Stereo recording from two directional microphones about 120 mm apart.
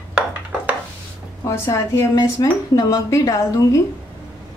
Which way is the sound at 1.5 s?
25° left (ahead or behind).